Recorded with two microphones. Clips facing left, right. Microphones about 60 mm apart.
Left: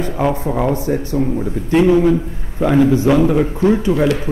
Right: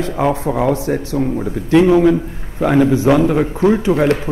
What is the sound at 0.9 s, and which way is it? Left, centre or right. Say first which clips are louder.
Speech: even; right.